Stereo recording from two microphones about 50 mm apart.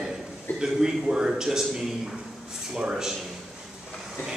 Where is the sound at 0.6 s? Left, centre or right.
Centre.